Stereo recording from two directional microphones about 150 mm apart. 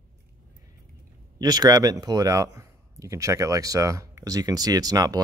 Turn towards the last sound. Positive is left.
turn(degrees=-25)  # may be behind; listen again after turning